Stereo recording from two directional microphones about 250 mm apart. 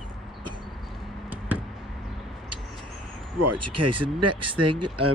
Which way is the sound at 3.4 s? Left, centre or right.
Right.